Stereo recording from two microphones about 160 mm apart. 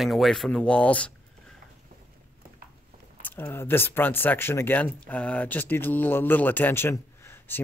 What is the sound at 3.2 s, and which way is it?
Speech, 15° left (ahead or behind).